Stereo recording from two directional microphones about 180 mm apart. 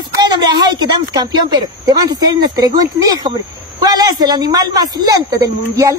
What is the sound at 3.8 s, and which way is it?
A woman's voice, 20° right (ahead or behind).